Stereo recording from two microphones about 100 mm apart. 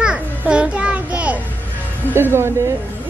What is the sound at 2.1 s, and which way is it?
Speech, 25° right (ahead or behind).